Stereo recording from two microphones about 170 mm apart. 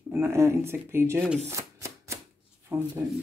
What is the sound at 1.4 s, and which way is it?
Chopping, 15° right (ahead or behind).